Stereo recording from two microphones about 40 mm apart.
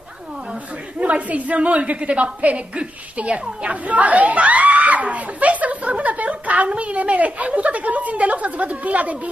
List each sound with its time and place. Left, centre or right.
0.9 s a woman's voice: right